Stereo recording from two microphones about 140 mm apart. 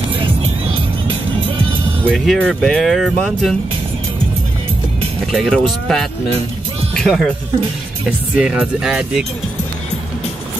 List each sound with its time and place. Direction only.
0.1 s music: 40° right (ahead or behind)
2.1 s speech: centre (ahead or behind)
5.2 s speech: centre (ahead or behind)
8.4 s speech: 5° right (ahead or behind)